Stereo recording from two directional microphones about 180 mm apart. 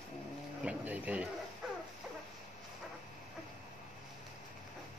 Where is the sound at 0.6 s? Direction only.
10° right (ahead or behind).